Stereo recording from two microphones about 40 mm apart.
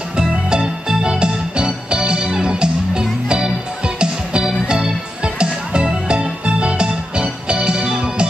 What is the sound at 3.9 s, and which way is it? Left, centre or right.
Music, right.